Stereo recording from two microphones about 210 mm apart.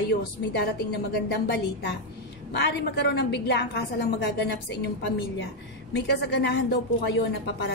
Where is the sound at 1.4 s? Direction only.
50° left (ahead or behind).